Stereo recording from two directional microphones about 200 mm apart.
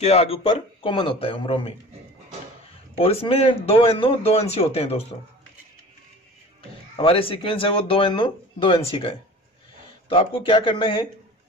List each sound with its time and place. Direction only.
0.0 s speech: 30° left (ahead or behind)
3.0 s speech: 30° left (ahead or behind)
7.0 s speech: 25° left (ahead or behind)